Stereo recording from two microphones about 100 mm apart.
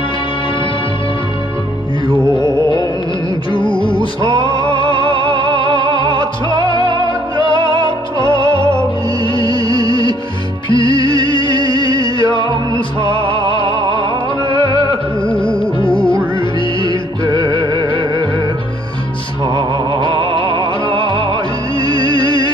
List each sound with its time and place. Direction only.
2.3 s music: 50° left (ahead or behind)
5.2 s music: 55° right (ahead or behind)
8.2 s music: 55° left (ahead or behind)
13.1 s music: 60° right (ahead or behind)
15.3 s music: 60° left (ahead or behind)
17.3 s music: 40° right (ahead or behind)
19.5 s music: 50° right (ahead or behind)
21.7 s music: 40° right (ahead or behind)
22.0 s music: 55° left (ahead or behind)